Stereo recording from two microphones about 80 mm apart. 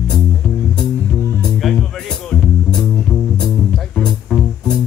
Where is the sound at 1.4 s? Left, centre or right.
Centre.